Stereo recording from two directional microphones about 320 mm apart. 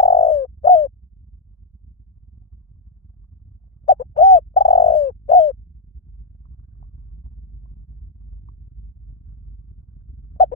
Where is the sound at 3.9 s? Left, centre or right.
Centre.